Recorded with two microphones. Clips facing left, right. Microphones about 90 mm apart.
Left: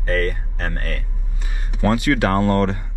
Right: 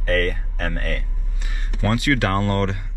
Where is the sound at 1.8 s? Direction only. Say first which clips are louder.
Left 3 dB; 25° left (ahead or behind).